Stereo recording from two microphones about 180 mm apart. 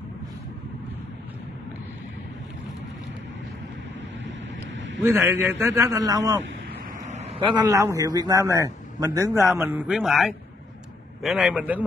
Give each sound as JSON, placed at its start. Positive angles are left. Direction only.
{"t": 5.0, "sound": "a man's voice", "side_deg": -15}
{"t": 7.1, "sound": "vehicle", "side_deg": -40}
{"t": 7.5, "sound": "a man's voice", "side_deg": -15}